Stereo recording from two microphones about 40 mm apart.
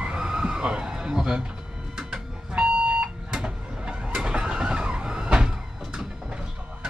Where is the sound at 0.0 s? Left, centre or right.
Right.